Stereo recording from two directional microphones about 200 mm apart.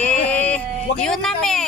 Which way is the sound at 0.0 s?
5° left (ahead or behind).